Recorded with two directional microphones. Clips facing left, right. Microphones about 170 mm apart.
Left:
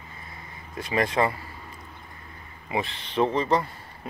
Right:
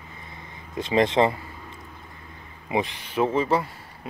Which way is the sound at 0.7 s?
20° right (ahead or behind).